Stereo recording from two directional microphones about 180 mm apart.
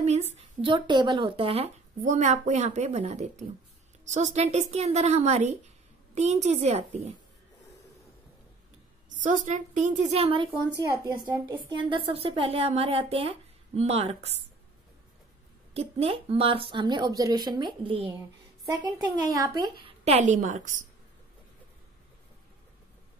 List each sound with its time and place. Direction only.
0.0 s a woman's voice: 40° right (ahead or behind)
0.6 s speech: 30° right (ahead or behind)
9.2 s a woman's voice: 45° right (ahead or behind)
10.8 s speech: 20° right (ahead or behind)
11.7 s speech: 25° right (ahead or behind)
15.7 s speech: 35° right (ahead or behind)
19.8 s a woman's voice: 40° right (ahead or behind)